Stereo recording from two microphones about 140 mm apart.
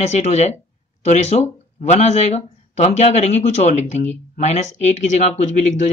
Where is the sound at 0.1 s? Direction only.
55° left (ahead or behind).